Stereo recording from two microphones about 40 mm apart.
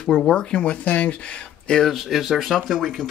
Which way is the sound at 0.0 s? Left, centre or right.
Centre.